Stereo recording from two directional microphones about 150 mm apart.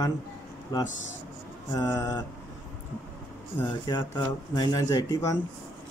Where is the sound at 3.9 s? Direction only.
30° left (ahead or behind).